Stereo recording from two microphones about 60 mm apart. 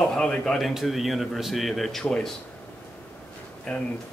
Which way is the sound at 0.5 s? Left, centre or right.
Centre.